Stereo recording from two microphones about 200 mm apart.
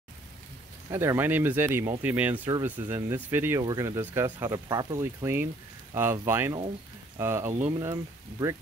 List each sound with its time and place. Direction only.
0.8 s speech: 15° right (ahead or behind)